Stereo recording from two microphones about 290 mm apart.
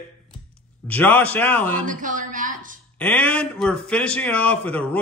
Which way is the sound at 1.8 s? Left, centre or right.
Right.